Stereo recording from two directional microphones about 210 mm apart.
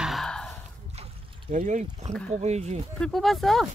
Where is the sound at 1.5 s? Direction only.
35° right (ahead or behind).